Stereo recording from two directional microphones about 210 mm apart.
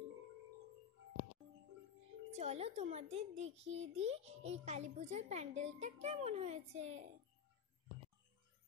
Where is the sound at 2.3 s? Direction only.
30° right (ahead or behind).